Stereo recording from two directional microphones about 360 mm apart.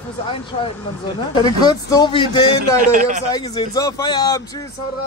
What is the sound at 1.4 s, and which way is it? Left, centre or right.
Speech, centre.